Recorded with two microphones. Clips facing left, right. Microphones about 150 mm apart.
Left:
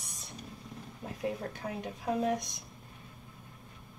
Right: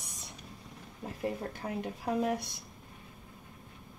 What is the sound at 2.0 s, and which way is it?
Speech, 10° right (ahead or behind).